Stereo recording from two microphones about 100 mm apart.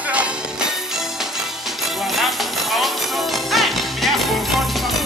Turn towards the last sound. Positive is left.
turn(degrees=0)  # may be behind; listen again after turning